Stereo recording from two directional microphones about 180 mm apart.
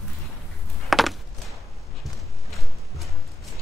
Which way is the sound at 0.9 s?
Centre (ahead or behind).